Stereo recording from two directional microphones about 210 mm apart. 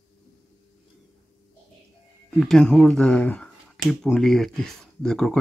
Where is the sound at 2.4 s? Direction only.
5° left (ahead or behind).